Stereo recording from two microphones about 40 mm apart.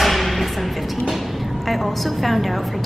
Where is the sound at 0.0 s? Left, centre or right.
Centre.